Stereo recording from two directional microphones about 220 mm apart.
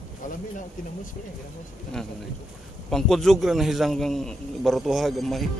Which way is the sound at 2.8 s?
Centre (ahead or behind).